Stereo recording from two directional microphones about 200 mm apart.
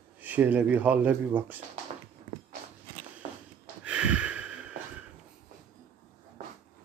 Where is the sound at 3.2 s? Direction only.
35° right (ahead or behind).